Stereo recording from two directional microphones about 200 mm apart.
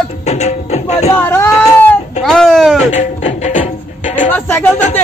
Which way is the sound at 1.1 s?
10° left (ahead or behind).